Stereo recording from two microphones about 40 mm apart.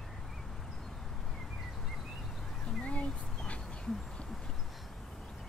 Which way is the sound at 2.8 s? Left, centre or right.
Left.